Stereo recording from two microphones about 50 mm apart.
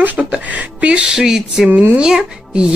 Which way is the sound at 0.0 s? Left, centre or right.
Right.